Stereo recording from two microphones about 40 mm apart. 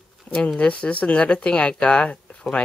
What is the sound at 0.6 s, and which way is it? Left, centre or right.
Speech, left.